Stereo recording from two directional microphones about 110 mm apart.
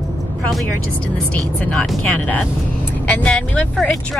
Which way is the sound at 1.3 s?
10° left (ahead or behind).